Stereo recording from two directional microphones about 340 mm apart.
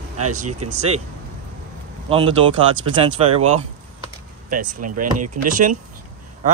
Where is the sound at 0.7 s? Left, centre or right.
Centre.